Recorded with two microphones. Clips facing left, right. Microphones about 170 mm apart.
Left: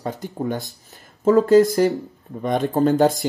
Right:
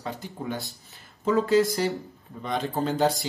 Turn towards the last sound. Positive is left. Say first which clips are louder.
# left 8 dB
turn(degrees=50)  # may be behind; listen again after turning